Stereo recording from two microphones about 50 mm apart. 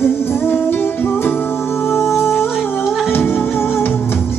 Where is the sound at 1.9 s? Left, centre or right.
Left.